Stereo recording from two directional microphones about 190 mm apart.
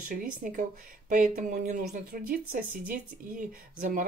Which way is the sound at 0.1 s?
45° right (ahead or behind).